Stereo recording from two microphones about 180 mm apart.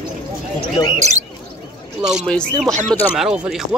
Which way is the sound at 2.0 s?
5° right (ahead or behind).